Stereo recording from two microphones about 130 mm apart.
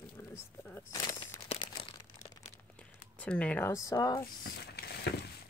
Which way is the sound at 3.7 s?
25° left (ahead or behind).